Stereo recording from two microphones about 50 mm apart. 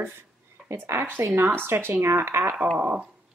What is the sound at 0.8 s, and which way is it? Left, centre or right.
Speech, right.